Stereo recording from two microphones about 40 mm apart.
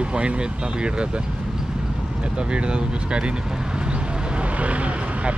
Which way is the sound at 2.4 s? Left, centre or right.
Right.